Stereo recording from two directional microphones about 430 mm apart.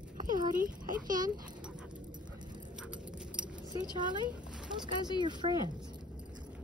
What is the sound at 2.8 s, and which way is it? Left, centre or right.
Keys jangling, centre.